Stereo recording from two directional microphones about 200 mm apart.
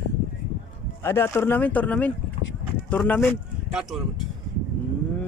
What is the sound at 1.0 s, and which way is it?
Speech, 10° left (ahead or behind).